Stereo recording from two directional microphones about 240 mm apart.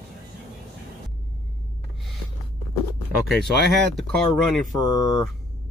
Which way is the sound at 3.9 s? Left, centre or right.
Centre.